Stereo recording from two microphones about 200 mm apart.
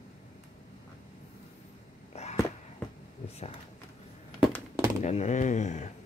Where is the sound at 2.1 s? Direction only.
30° left (ahead or behind).